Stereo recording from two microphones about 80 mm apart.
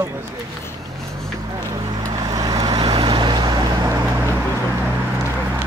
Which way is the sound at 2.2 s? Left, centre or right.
Right.